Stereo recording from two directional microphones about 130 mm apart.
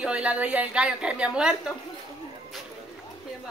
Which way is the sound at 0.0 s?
10° right (ahead or behind).